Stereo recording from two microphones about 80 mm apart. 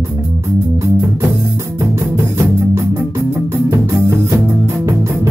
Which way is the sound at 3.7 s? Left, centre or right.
Right.